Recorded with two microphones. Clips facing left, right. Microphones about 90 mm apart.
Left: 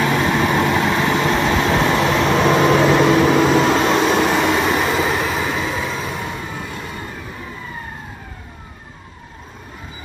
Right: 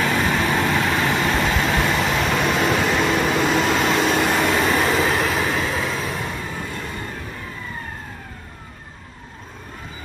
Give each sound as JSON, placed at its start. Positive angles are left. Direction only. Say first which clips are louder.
{"t": 0.0, "sound": "vehicle", "louder": "left 3 dB", "side_deg": 15}
{"t": 1.7, "sound": "vehicle", "louder": "left 4 dB", "side_deg": 0}
{"t": 2.7, "sound": "microwave oven", "louder": "left 6 dB", "side_deg": 40}
{"t": 3.0, "sound": "vehicle", "louder": "left 6 dB", "side_deg": 0}
{"t": 3.5, "sound": "vehicle", "louder": "left 4 dB", "side_deg": 35}
{"t": 4.2, "sound": "train", "louder": "left 3 dB", "side_deg": 5}